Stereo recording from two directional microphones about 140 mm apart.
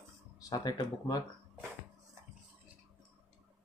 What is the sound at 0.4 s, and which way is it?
Speech, 25° left (ahead or behind).